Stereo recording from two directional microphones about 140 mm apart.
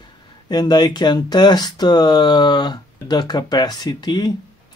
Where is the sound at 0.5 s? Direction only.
30° left (ahead or behind).